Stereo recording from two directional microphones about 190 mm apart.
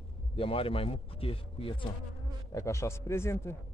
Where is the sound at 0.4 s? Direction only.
30° left (ahead or behind).